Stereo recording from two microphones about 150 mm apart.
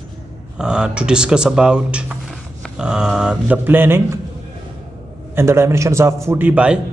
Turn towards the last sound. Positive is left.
turn(degrees=-10)  # may be behind; listen again after turning